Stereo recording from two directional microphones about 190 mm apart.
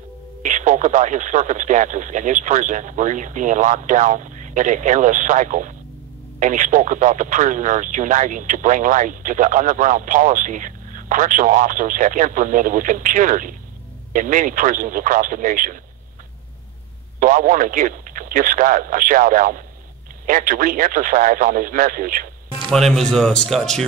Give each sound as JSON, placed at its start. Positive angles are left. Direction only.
{"t": 0.4, "sound": "speech", "side_deg": -40}
{"t": 17.2, "sound": "speech", "side_deg": -45}
{"t": 22.7, "sound": "speech", "side_deg": 0}